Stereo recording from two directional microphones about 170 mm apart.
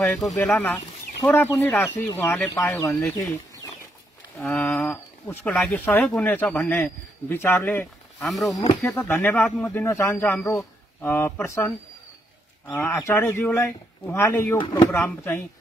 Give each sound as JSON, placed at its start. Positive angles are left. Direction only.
{"t": 0.0, "sound": "speech", "side_deg": 5}
{"t": 4.4, "sound": "speech", "side_deg": 5}
{"t": 8.3, "sound": "speech", "side_deg": 0}
{"t": 8.8, "sound": "speech", "side_deg": 10}
{"t": 12.7, "sound": "speech", "side_deg": 10}